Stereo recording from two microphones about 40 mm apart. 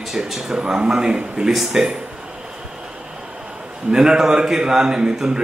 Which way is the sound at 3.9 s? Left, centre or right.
Centre.